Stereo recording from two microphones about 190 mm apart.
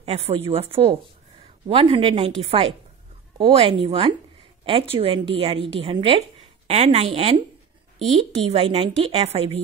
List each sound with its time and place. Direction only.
0.0 s a woman's voice: 30° right (ahead or behind)